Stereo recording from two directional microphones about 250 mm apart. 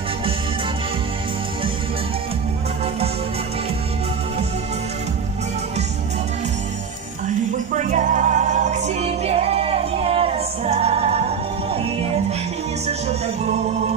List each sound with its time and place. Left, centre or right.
7.7 s music: right